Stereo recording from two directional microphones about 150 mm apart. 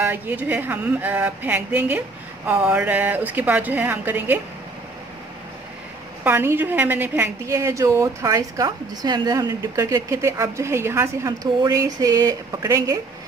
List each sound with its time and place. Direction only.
0.0 s a woman's voice: 15° right (ahead or behind)
6.2 s a woman's voice: 15° right (ahead or behind)